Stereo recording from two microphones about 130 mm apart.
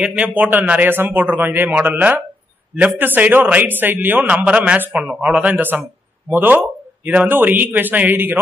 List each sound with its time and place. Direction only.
0.0 s a man's voice: 10° right (ahead or behind)